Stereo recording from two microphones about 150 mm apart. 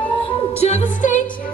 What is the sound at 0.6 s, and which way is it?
Music, 45° left (ahead or behind).